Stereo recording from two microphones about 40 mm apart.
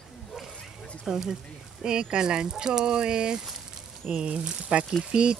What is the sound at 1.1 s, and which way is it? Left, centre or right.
Speech, centre.